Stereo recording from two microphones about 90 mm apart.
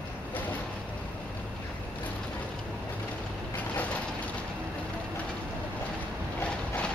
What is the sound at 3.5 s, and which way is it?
Mechanisms, 15° left (ahead or behind).